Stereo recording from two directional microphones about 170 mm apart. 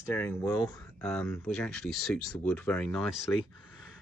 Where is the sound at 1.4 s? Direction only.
5° left (ahead or behind).